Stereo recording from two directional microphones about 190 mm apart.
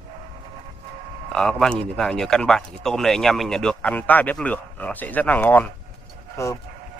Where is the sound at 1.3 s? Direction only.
5° left (ahead or behind).